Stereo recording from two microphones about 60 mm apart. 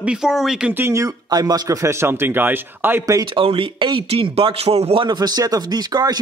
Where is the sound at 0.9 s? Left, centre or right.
Right.